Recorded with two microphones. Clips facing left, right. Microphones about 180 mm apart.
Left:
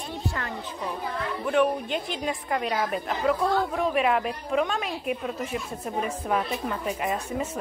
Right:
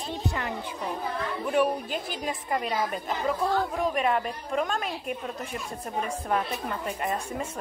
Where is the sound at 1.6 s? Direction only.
5° right (ahead or behind).